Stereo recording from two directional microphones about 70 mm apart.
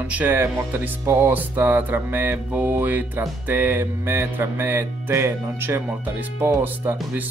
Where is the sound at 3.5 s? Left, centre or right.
Right.